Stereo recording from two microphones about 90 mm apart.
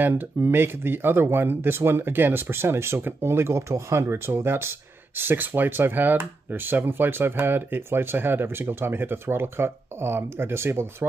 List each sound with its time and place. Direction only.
0.0 s speech: 25° right (ahead or behind)